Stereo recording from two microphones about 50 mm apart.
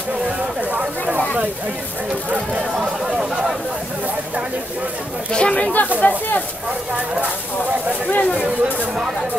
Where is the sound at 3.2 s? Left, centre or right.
Centre.